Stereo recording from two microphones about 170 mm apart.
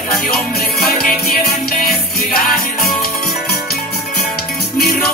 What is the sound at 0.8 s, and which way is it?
Music, 60° left (ahead or behind).